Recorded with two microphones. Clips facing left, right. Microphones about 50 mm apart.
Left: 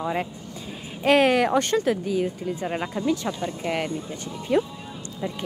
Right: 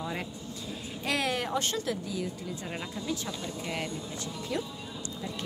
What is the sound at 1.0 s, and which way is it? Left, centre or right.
A woman's voice, left.